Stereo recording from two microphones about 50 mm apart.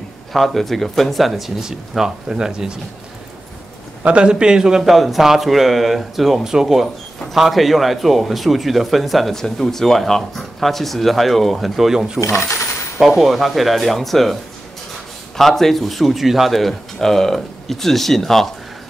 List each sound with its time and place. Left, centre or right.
0.3 s speech: centre
1.6 s a man's voice: centre
4.0 s a man's voice: right; by 12.1 s centre
12.4 s coin: left
13.0 s speech: centre